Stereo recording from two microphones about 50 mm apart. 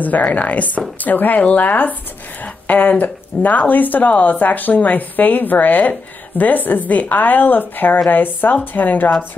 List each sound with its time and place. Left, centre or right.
0.0 s speech: left